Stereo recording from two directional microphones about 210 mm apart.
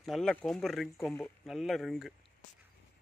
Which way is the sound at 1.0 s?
10° left (ahead or behind).